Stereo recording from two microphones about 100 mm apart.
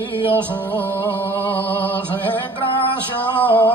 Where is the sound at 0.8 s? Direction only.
20° left (ahead or behind).